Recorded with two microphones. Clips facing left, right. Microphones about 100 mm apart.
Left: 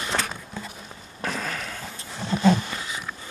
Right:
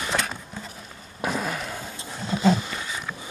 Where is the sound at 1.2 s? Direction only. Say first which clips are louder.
Right 3 dB; 15° right (ahead or behind).